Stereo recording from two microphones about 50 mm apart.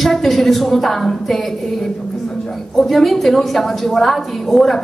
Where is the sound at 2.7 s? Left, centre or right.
Centre.